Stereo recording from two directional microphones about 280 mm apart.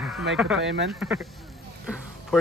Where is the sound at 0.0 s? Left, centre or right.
Centre.